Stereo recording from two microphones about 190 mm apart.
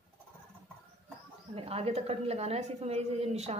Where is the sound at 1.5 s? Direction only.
30° right (ahead or behind).